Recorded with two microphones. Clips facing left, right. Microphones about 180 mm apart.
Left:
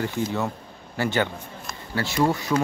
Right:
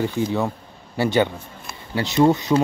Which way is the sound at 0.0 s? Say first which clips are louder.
Right 4 dB; 15° right (ahead or behind).